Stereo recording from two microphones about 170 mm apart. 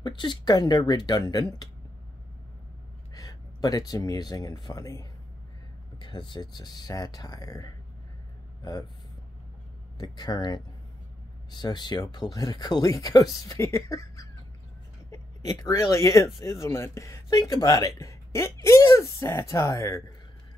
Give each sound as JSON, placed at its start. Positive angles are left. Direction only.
{"t": 0.0, "sound": "speech", "side_deg": 25}
{"t": 3.2, "sound": "speech", "side_deg": 20}
{"t": 9.9, "sound": "speech", "side_deg": 25}